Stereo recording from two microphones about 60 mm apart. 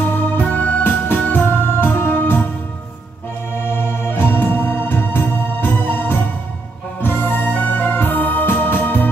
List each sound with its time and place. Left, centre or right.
0.1 s music: left
3.7 s music: left